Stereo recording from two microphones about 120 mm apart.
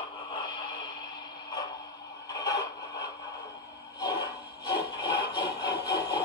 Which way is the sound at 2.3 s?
30° left (ahead or behind).